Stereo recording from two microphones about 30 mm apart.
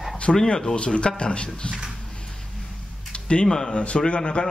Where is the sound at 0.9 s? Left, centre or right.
Left.